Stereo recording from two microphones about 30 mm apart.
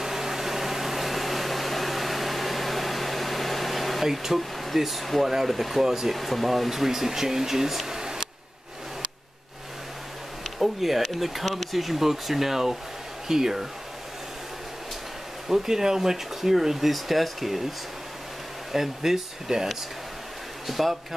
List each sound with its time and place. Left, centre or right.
0.0 s a sound: centre
4.0 s speech: centre
5.9 s speech: centre
6.1 s speech: centre
6.7 s speech: centre
10.6 s speech: centre
15.4 s speech: centre
18.7 s speech: centre